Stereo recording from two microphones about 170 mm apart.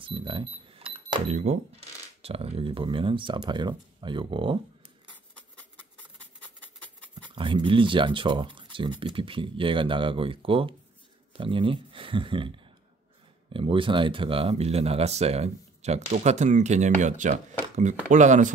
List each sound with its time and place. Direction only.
0.0 s speech: 30° right (ahead or behind)
7.2 s speech: 30° right (ahead or behind); by 18.5 s 45° right (ahead or behind)